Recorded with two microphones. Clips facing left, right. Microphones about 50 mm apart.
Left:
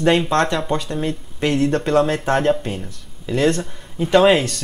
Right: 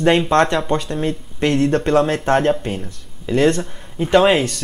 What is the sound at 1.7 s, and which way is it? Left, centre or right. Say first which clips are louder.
Speech: right 1 dB; right.